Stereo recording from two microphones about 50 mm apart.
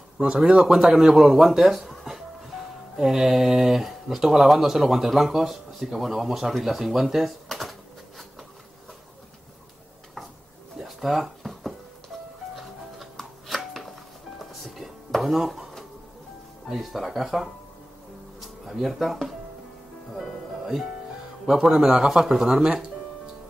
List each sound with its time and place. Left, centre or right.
0.2 s a man's voice: centre
10.8 s a sound: centre
12.5 s music: centre
14.4 s a sound: centre
16.6 s speech: centre
20.2 s music: centre
21.5 s a man's voice: centre
22.6 s a man's voice: centre